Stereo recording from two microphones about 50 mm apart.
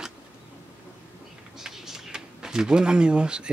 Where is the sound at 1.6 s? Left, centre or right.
Centre.